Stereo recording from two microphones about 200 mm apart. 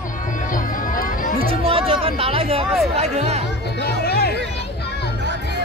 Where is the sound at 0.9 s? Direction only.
45° left (ahead or behind).